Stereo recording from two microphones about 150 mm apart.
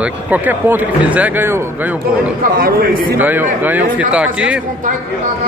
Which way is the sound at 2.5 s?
80° right.